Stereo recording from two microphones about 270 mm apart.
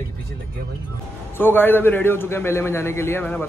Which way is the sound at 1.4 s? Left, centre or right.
Centre.